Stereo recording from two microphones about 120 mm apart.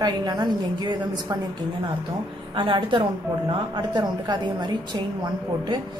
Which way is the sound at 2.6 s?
45° right (ahead or behind).